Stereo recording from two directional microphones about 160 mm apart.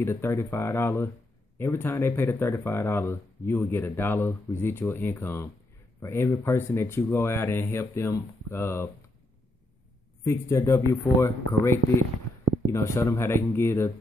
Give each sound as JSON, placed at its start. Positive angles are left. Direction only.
{"t": 0.0, "sound": "speech", "side_deg": 15}
{"t": 10.2, "sound": "speech", "side_deg": 15}